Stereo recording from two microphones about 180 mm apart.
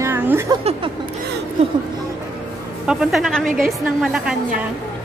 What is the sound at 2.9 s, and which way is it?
Speech, centre (ahead or behind).